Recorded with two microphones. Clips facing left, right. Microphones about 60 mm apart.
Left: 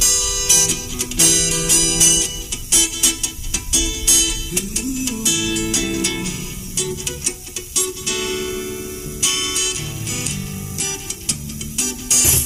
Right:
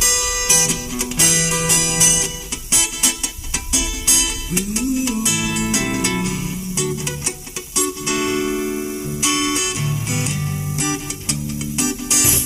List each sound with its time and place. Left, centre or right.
0.0 s music: right